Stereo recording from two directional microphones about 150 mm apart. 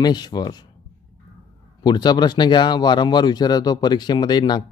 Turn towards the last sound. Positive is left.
turn(degrees=30)  # may be behind; listen again after turning